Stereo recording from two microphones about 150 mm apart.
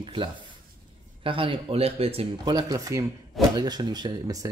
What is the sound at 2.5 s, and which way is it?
Speech, 25° right (ahead or behind).